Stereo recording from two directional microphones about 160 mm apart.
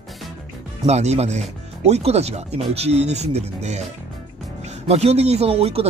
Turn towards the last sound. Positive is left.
turn(degrees=-40)  # may be behind; listen again after turning